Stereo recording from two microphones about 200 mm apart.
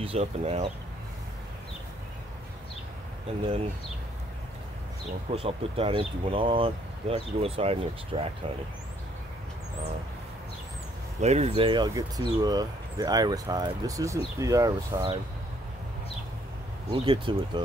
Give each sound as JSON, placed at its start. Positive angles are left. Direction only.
{"t": 0.0, "sound": "speech", "side_deg": -30}
{"t": 5.3, "sound": "speech", "side_deg": -30}
{"t": 11.1, "sound": "speech", "side_deg": -35}
{"t": 16.9, "sound": "speech", "side_deg": -25}